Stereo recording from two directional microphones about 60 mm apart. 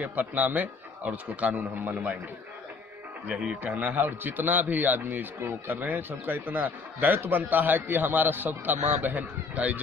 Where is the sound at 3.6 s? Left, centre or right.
Right.